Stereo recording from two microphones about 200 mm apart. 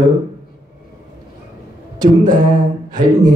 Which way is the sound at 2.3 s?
20° right (ahead or behind).